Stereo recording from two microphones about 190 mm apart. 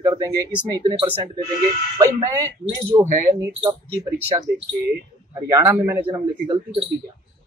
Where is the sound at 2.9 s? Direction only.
15° right (ahead or behind).